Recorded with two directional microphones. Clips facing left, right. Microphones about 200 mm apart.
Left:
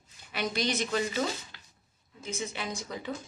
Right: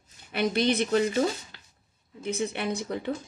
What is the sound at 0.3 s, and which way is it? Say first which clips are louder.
Speech: right 6 dB; 55° right (ahead or behind).